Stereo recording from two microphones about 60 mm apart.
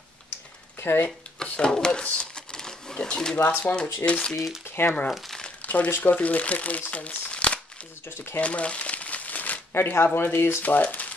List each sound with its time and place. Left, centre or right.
0.7 s speech: left
1.0 s speech: centre
2.1 s crumpling: centre
3.6 s speech: centre
4.3 s speech: centre
4.6 s crumpling: left
5.6 s crumpling: left
5.9 s speech: left
6.1 s speech: left
8.4 s crumpling: left
9.8 s speech: left
10.6 s speech: left